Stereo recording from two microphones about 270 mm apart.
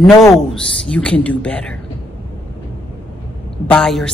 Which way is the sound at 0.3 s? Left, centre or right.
Centre.